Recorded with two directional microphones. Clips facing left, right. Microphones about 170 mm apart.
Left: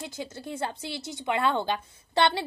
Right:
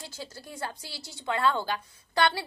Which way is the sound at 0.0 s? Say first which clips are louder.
Left 6 dB; 20° left (ahead or behind).